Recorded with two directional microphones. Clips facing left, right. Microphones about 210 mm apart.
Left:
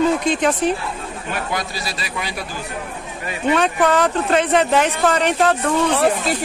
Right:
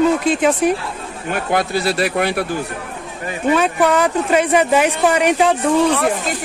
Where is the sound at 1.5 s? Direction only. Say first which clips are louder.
Right 9 dB; 60° right (ahead or behind).